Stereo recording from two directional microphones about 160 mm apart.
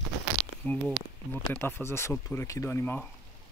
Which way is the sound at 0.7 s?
10° left (ahead or behind).